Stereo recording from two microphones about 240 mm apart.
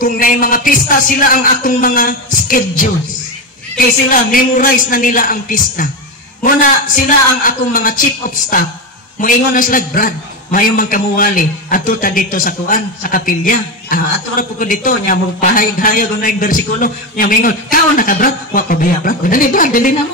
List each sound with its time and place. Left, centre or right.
0.0 s a man's voice: left
9.2 s a man's voice: left